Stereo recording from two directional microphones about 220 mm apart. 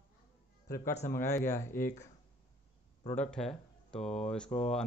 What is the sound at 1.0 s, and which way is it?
Speech, 10° left (ahead or behind).